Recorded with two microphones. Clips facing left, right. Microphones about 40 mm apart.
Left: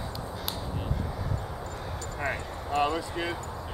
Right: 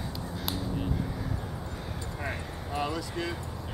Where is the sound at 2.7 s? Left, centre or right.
Centre.